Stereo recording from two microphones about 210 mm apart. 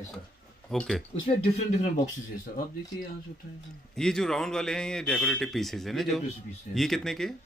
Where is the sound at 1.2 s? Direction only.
30° left (ahead or behind).